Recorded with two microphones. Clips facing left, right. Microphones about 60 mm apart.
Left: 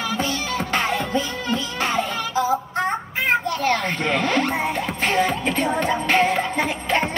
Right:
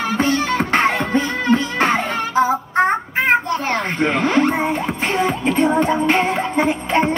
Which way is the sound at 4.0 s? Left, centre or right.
Centre.